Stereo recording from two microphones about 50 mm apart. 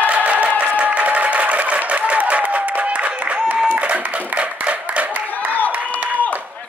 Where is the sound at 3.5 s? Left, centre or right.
Right.